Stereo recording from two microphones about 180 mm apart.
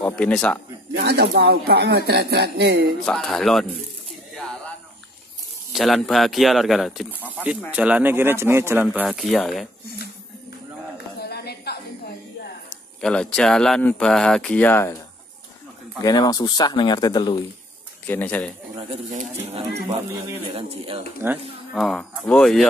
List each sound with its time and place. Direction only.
0.0 s speech: 5° left (ahead or behind)
0.9 s speech: 65° right (ahead or behind)
3.1 s speech: centre (ahead or behind)
5.7 s speech: centre (ahead or behind)
11.1 s a sound: 60° left (ahead or behind)
13.0 s speech: 5° left (ahead or behind)
16.0 s speech: 20° left (ahead or behind)
18.0 s speech: 10° left (ahead or behind)
20.5 s speech: 30° right (ahead or behind)
21.2 s speech: 15° right (ahead or behind)
21.7 s speech: centre (ahead or behind)